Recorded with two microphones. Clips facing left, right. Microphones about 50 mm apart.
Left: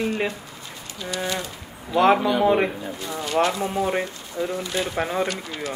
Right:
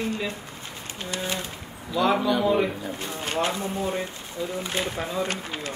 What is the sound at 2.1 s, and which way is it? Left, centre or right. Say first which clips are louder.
Speech: left 3 dB; left.